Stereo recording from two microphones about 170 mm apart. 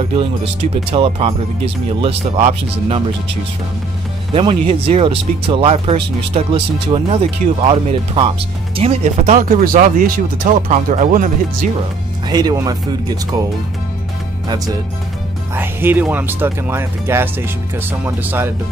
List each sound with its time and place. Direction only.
0.9 s speech: 30° right (ahead or behind)
4.3 s speech: 30° right (ahead or behind)
9.7 s speech: 50° right (ahead or behind)
12.3 s speech: 25° right (ahead or behind)
15.5 s speech: 10° right (ahead or behind)